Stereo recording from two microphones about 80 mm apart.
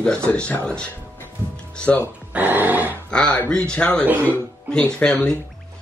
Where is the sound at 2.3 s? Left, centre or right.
Right.